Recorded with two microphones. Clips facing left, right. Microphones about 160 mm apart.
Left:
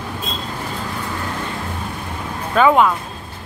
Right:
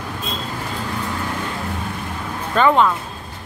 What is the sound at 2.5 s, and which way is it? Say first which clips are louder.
Speech: left 2 dB; 5° left (ahead or behind).